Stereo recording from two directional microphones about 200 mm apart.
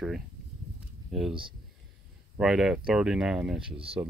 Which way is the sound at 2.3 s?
Centre (ahead or behind).